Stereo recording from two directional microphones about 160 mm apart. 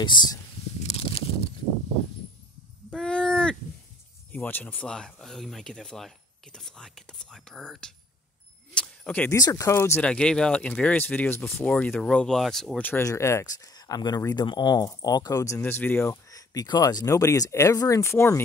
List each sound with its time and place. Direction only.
0.0 s speech: 30° left (ahead or behind)
0.7 s a sound: 40° left (ahead or behind)
2.9 s a sound: 5° left (ahead or behind)
4.3 s speech: 10° left (ahead or behind)
8.7 s keys jangling: 5° left (ahead or behind)
9.4 s speech: 20° left (ahead or behind)
10.0 s speech: 5° left (ahead or behind)